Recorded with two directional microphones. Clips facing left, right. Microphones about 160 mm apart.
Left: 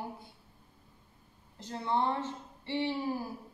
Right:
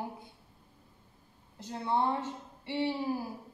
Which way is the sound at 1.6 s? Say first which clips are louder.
Right 1 dB; 10° right (ahead or behind).